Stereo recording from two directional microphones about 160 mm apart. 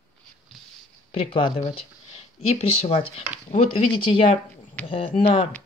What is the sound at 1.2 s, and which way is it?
Speech, 40° left (ahead or behind).